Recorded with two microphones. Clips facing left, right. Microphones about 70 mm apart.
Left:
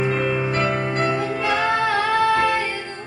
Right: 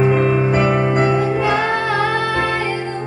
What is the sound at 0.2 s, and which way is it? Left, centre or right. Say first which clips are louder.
Music: right 6 dB; right.